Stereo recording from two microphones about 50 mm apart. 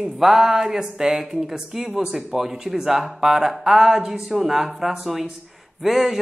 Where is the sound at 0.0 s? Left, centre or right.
Centre.